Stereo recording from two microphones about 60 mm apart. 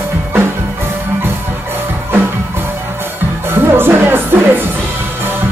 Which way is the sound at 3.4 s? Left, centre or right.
Right.